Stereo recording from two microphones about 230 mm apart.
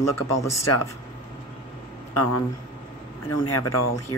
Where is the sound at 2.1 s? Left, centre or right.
Left.